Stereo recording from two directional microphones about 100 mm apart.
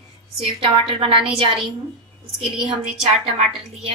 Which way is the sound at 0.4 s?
65° right (ahead or behind).